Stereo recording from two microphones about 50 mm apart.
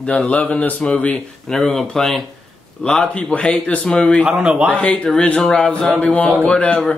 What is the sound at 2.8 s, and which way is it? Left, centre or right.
Speech, centre.